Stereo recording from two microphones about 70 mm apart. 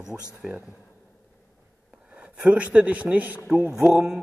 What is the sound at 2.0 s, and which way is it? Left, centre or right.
A man's voice, centre.